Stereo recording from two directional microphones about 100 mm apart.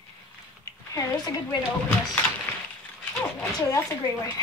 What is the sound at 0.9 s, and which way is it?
Speech, 40° left (ahead or behind).